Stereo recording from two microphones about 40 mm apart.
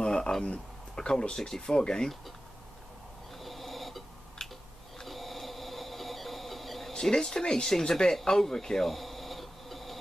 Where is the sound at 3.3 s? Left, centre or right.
Centre.